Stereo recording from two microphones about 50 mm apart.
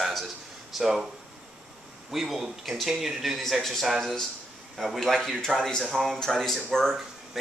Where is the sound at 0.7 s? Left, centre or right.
Centre.